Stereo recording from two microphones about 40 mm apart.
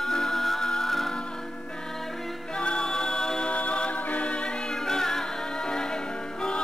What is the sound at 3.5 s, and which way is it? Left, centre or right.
A capella, left.